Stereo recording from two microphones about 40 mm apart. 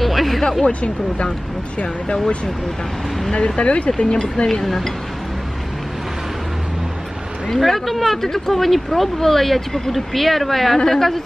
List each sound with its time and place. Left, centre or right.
0.0 s music: centre
0.7 s speech: left
3.3 s speech: left
4.5 s speech: centre
7.5 s speech: centre